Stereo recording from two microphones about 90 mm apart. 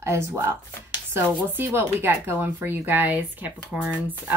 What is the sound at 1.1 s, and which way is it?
Speech, 25° right (ahead or behind).